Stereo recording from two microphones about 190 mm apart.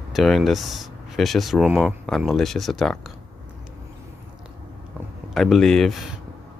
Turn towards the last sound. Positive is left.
turn(degrees=0)  # may be behind; listen again after turning